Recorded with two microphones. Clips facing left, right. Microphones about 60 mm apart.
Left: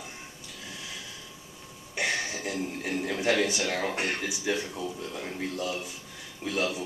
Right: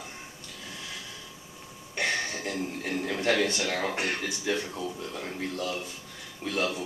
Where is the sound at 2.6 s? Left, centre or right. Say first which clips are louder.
Left 1 dB; centre.